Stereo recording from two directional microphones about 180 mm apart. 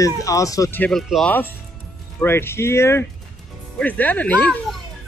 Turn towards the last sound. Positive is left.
turn(degrees=10)  # may be behind; listen again after turning